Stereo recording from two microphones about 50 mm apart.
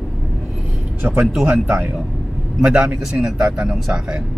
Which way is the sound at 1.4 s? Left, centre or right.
Right.